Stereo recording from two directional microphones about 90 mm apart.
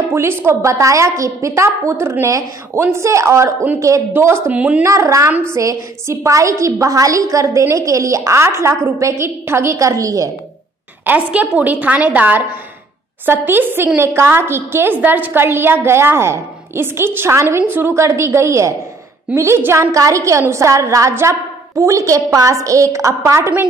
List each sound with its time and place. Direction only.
0.1 s a woman's voice: 25° right (ahead or behind)
4.5 s a woman's voice: 15° right (ahead or behind)
4.8 s a woman's voice: 35° right (ahead or behind)
11.1 s a woman's voice: 15° right (ahead or behind); by 23.6 s 30° right (ahead or behind)